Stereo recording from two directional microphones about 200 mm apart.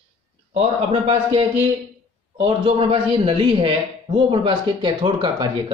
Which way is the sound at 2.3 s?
30° right (ahead or behind).